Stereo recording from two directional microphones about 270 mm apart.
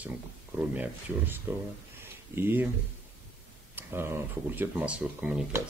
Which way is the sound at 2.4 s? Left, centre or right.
Centre.